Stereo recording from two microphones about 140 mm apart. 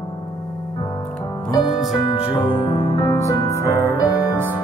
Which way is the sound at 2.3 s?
30° left (ahead or behind).